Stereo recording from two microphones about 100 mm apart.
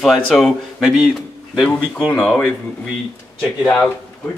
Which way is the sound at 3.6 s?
15° left (ahead or behind).